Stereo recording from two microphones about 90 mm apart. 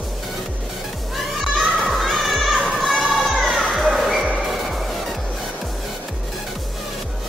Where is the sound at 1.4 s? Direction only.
Centre (ahead or behind).